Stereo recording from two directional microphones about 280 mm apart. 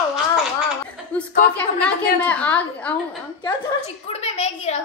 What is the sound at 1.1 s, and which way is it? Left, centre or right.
A woman's voice, centre.